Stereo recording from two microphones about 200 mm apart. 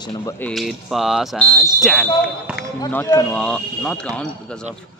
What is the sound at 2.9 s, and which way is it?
Speech, 10° left (ahead or behind).